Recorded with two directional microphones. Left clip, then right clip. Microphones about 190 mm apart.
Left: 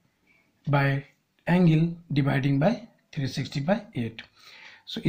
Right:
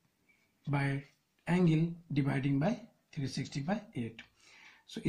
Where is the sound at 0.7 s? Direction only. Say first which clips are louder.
Left 11 dB; 20° left (ahead or behind).